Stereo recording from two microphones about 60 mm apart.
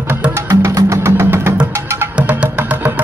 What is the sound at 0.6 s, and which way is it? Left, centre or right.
Music, right.